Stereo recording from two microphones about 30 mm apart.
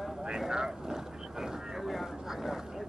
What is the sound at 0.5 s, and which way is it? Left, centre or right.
Boat, right.